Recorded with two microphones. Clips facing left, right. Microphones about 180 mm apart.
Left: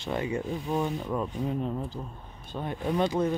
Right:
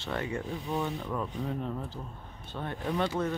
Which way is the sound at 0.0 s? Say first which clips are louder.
Left 4 dB; 15° left (ahead or behind).